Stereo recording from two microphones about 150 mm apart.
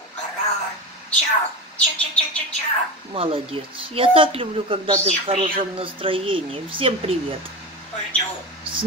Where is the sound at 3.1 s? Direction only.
40° right (ahead or behind).